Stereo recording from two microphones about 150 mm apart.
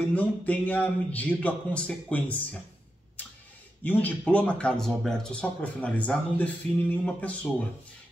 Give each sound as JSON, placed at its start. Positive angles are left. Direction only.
{"t": 0.1, "sound": "speech", "side_deg": 10}
{"t": 3.8, "sound": "speech", "side_deg": 10}